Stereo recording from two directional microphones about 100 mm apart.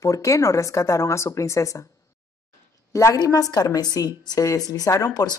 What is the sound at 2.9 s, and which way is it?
A woman's voice, 30° left (ahead or behind).